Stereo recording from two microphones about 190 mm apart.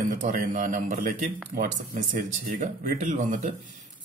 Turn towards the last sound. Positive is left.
turn(degrees=-40)  # may be behind; listen again after turning